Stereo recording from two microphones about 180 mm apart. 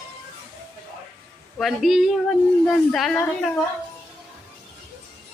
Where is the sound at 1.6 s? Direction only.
Centre (ahead or behind).